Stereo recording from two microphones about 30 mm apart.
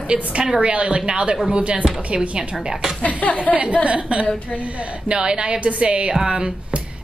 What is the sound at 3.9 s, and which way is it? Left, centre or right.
A woman's voice, right.